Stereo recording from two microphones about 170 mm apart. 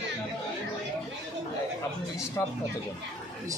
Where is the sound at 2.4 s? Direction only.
15° left (ahead or behind).